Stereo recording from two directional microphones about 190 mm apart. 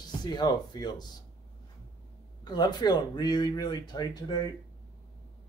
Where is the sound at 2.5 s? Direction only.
20° left (ahead or behind).